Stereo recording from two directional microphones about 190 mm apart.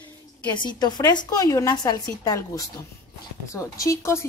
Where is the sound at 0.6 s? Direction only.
20° left (ahead or behind).